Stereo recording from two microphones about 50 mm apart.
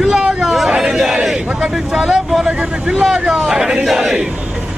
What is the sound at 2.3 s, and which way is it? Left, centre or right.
Battle cry, centre.